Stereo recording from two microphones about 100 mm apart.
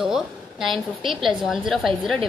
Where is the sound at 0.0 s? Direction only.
5° right (ahead or behind).